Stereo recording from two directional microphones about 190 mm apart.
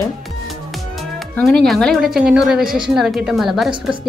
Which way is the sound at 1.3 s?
5° left (ahead or behind).